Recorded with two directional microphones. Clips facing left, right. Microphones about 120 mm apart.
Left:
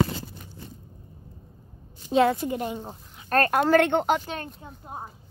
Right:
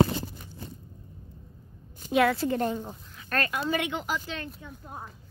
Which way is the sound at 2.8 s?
25° left (ahead or behind).